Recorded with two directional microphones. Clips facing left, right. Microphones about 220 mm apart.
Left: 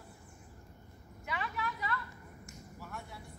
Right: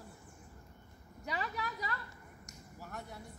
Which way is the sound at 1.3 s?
35° right (ahead or behind).